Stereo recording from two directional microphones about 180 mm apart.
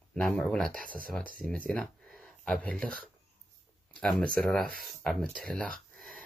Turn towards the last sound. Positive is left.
turn(degrees=5)  # may be behind; listen again after turning